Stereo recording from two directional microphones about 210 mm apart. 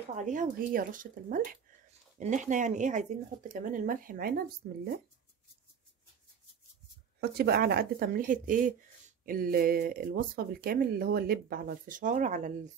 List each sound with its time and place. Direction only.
0.1 s speech: 35° right (ahead or behind)
7.2 s speech: 50° right (ahead or behind)